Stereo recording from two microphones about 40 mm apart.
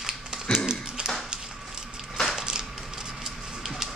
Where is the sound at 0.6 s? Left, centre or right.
Centre.